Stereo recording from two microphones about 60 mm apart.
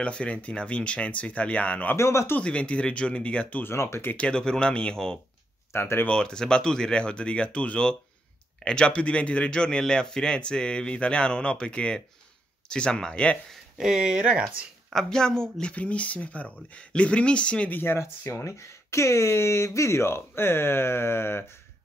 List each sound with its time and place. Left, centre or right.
0.0 s speech: centre
2.0 s speech: left
2.4 s speech: left
3.6 s speech: left
4.3 s speech: centre
5.7 s speech: left
6.0 s speech: centre
13.7 s speech: centre
15.0 s speech: centre
15.7 s speech: left
17.6 s speech: left
18.4 s speech: left